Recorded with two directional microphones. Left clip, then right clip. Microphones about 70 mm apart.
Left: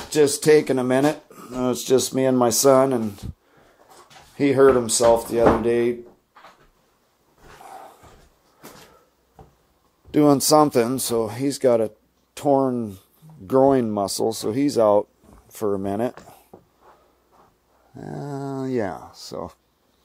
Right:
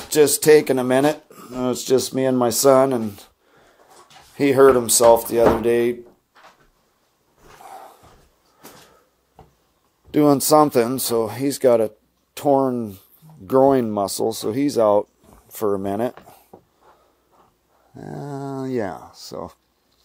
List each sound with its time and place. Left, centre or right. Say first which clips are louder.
0.1 s speech: right 3 dB; right
1.3 s speech: even; centre
4.4 s speech: right 2 dB; right
7.5 s roaring cats: right 1 dB; centre
10.1 s speech: right 1 dB; centre
17.9 s speech: even; centre